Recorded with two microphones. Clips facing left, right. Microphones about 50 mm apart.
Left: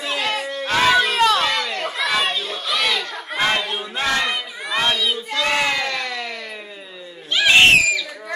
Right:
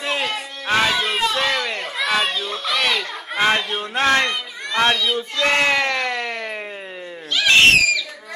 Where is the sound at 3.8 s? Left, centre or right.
Right.